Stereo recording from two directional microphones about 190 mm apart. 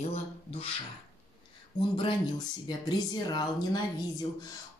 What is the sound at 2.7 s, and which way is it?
Speech, 20° left (ahead or behind).